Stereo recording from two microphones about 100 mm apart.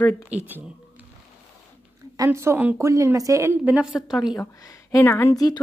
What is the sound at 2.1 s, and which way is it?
A woman's voice, 30° right (ahead or behind).